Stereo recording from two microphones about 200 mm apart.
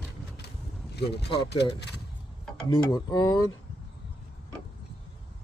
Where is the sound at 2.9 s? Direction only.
20° left (ahead or behind).